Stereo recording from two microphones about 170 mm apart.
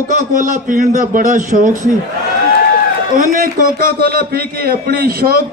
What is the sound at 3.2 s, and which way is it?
A man's voice, 50° right (ahead or behind).